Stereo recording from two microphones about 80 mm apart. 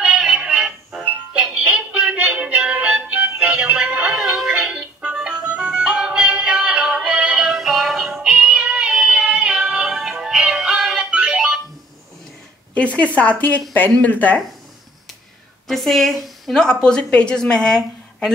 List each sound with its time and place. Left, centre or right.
0.0 s music: centre
12.7 s a woman's voice: centre
15.7 s a woman's voice: centre